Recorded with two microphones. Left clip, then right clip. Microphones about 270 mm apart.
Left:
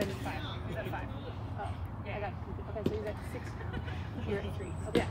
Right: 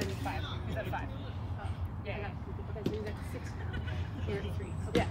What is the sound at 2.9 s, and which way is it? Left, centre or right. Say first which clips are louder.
Speech: left 2 dB; left.